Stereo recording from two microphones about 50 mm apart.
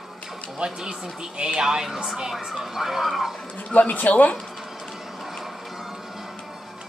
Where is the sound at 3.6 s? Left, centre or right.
Left.